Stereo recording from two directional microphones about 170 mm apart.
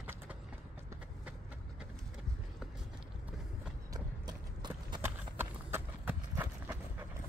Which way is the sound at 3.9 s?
25° right (ahead or behind).